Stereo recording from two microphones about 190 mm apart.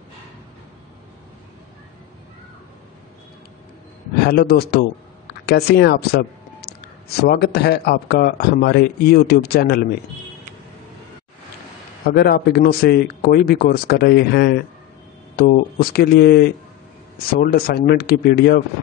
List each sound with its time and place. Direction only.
4.2 s speech: 55° left (ahead or behind)
12.1 s speech: 55° left (ahead or behind)